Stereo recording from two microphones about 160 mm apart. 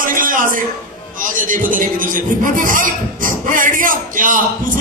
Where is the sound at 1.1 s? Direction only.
60° right (ahead or behind).